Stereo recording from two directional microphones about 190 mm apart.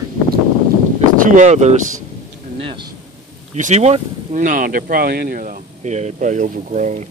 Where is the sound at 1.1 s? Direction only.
45° right (ahead or behind); by 2.9 s 30° right (ahead or behind).